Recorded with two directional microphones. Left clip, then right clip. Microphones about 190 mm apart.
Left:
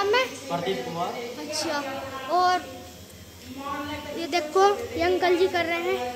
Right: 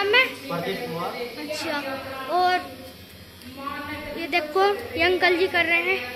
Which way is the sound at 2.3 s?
15° left (ahead or behind).